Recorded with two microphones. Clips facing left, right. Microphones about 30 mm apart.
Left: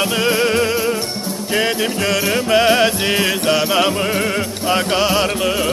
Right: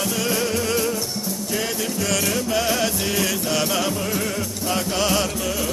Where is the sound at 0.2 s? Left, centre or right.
Left.